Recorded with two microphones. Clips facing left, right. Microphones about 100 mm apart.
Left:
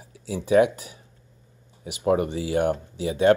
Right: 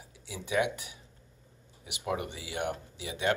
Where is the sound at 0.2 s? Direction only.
40° left (ahead or behind).